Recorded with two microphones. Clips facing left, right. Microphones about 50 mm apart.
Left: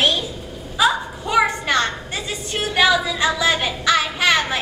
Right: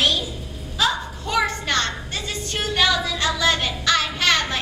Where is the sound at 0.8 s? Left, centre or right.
Centre.